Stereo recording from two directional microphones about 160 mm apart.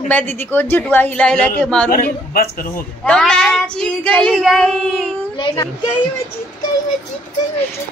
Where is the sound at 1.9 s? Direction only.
65° left (ahead or behind).